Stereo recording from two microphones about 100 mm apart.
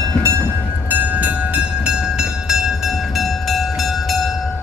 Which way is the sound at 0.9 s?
15° right (ahead or behind).